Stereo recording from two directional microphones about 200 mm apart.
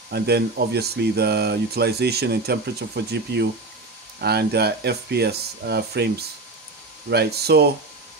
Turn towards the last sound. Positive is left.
turn(degrees=-55)  # may be behind; listen again after turning